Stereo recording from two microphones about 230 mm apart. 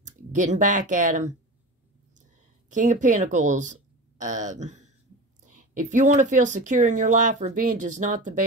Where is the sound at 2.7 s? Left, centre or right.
Right.